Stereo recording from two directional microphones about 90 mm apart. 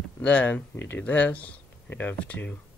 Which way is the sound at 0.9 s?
15° left (ahead or behind).